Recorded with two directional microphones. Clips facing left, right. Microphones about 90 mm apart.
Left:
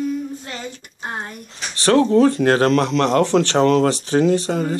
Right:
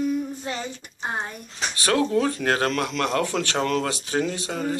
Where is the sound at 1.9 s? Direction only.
30° left (ahead or behind).